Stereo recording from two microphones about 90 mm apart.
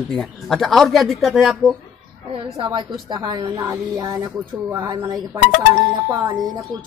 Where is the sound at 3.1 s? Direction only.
50° right (ahead or behind).